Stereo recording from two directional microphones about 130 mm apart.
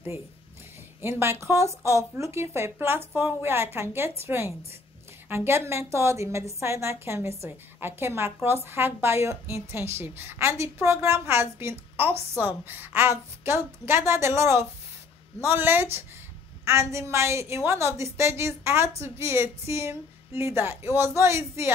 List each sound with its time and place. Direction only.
1.0 s a woman's voice: 20° right (ahead or behind)